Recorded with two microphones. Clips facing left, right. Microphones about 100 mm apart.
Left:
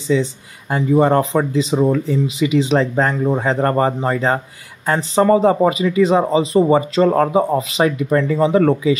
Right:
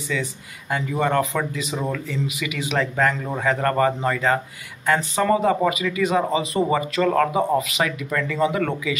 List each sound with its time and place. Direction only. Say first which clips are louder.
0.1 s speech: left 10 dB; 30° left (ahead or behind)